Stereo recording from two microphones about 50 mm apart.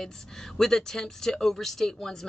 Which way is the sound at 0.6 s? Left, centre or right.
Centre.